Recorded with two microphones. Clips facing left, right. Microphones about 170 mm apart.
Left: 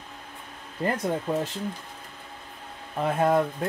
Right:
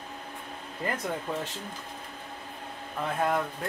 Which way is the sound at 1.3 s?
10° left (ahead or behind).